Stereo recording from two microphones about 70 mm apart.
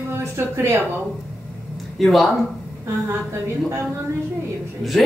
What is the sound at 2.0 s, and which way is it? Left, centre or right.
Speech, centre.